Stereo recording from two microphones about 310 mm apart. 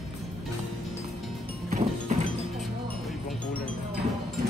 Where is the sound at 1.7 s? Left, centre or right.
Right.